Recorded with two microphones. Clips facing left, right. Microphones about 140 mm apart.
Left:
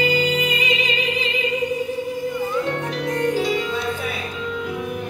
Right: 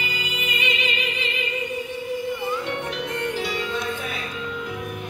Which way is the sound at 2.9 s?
40° left (ahead or behind).